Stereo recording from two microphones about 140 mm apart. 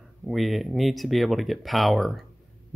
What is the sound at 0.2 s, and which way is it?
Speech, centre (ahead or behind).